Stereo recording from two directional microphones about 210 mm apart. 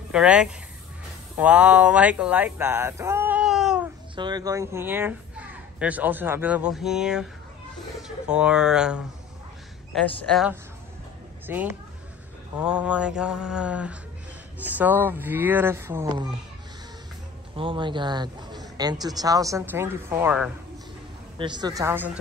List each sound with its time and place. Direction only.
0.1 s mantra: 5° right (ahead or behind)
1.4 s speech: 5° right (ahead or behind)
4.1 s a child's voice: 20° right (ahead or behind); by 7.2 s 5° right (ahead or behind)
8.3 s mantra: 5° right (ahead or behind)
11.4 s speech: 10° right (ahead or behind)
12.5 s mantra: 5° right (ahead or behind)
14.6 s speech: 10° right (ahead or behind)
17.6 s a man's voice: 25° right (ahead or behind); by 20.5 s 10° right (ahead or behind)
21.4 s speech: 20° right (ahead or behind)